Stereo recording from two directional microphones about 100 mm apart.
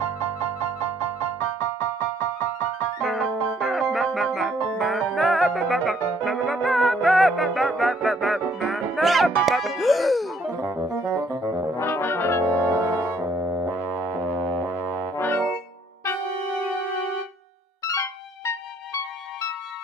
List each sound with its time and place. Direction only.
1.6 s music: 30° left (ahead or behind)
3.0 s music: centre (ahead or behind)
11.8 s brass instrument: 25° left (ahead or behind)
12.6 s music: 15° right (ahead or behind)
14.8 s brass instrument: 20° left (ahead or behind)